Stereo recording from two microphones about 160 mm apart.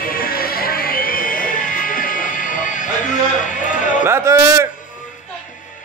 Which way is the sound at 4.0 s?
15° right (ahead or behind).